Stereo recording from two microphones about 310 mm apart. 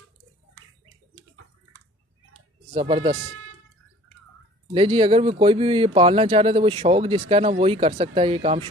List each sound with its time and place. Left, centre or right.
2.7 s speech: centre
4.7 s speech: centre